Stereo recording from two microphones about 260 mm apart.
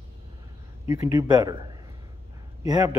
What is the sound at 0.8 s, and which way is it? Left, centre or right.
Speech, centre.